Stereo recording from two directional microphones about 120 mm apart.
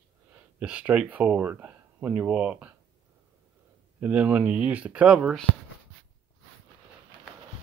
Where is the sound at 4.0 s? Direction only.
10° right (ahead or behind).